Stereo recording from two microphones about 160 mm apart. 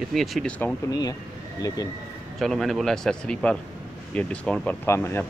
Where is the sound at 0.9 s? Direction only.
20° left (ahead or behind).